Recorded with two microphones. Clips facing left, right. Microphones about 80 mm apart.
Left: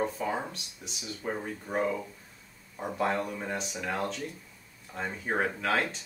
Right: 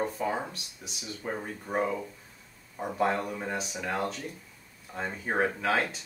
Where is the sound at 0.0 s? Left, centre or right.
Centre.